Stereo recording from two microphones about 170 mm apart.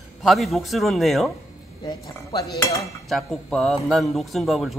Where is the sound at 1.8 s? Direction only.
20° left (ahead or behind).